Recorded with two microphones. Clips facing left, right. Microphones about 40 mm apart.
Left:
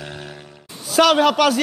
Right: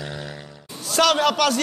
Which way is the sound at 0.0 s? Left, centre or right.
Left.